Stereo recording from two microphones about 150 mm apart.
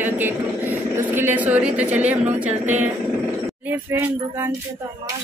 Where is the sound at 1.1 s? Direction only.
15° right (ahead or behind).